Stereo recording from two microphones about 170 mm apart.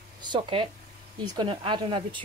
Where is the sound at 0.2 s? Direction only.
30° right (ahead or behind).